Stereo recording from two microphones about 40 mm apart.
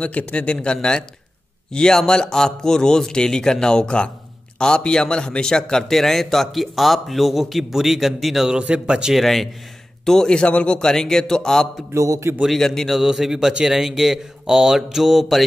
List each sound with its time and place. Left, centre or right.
0.0 s a man's voice: left
1.7 s a man's voice: centre
8.7 s speech: centre
9.1 s a man's voice: centre
10.3 s a man's voice: left
10.8 s a man's voice: centre
12.9 s a man's voice: centre
13.5 s speech: right
13.7 s a man's voice: centre
14.4 s mantra: centre
14.9 s a man's voice: centre